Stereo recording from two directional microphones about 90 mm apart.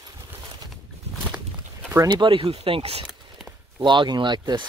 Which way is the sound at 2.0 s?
60° right (ahead or behind).